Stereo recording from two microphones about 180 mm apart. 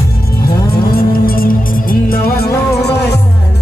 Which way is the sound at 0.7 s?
55° left (ahead or behind).